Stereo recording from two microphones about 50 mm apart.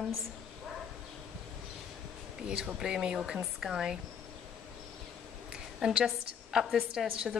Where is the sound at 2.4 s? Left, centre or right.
Centre.